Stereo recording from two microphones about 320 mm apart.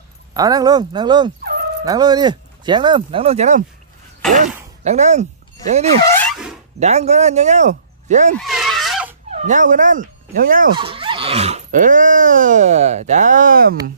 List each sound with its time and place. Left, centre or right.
0.3 s speech: centre
4.2 s speech: centre
4.8 s speech: right
6.0 s a sound: centre
6.8 s speech: right
8.4 s a sound: centre
9.3 s speech: right